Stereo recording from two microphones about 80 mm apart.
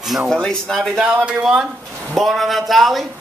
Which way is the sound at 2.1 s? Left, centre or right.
Centre.